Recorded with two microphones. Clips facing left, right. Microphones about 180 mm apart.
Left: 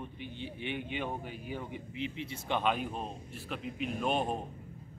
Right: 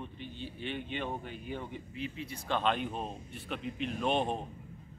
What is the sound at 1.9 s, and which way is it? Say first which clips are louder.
Speech: left 2 dB; 20° left (ahead or behind).